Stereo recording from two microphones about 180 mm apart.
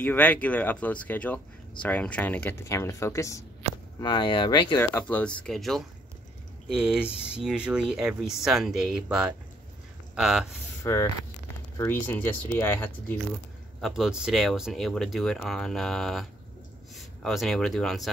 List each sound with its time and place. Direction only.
0.0 s speech: 10° left (ahead or behind); by 4.7 s 25° left (ahead or behind)
4.7 s speech: 10° left (ahead or behind)
10.8 s speech: 15° left (ahead or behind)
13.7 s speech: centre (ahead or behind)